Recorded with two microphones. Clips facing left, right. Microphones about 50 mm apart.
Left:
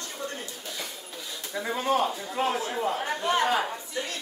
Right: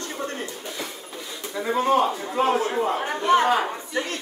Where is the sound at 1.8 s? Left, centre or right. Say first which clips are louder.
Right 6 dB; right.